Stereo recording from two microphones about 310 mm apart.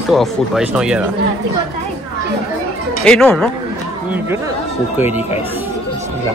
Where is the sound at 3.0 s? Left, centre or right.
Centre.